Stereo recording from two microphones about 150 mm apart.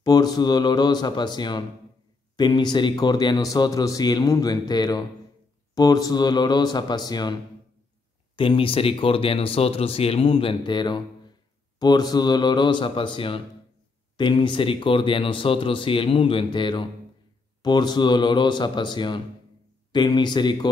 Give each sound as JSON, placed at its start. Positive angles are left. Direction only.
{"t": 0.0, "sound": "speech", "side_deg": 25}
{"t": 8.4, "sound": "speech", "side_deg": 35}